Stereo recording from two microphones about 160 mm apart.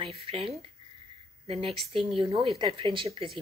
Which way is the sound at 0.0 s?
35° right (ahead or behind).